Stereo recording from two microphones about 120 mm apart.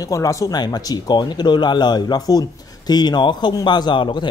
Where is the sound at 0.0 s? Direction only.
30° left (ahead or behind).